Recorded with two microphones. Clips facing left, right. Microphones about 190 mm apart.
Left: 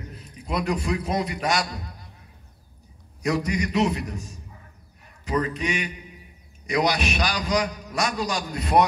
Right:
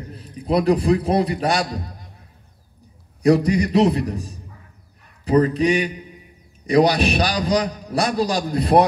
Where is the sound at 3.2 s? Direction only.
35° right (ahead or behind).